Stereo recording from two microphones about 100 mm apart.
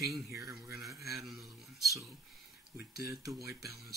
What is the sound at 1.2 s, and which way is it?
Speech, centre (ahead or behind).